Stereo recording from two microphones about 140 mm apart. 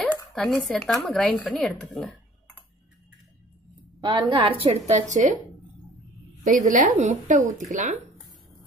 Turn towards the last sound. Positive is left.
turn(degrees=-65)  # may be behind; listen again after turning